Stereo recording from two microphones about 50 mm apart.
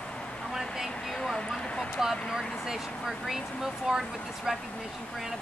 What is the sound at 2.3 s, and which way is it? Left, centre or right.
Speech, centre.